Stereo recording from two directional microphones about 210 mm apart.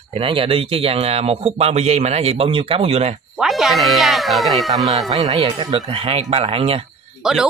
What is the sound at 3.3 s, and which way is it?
Speech, centre (ahead or behind).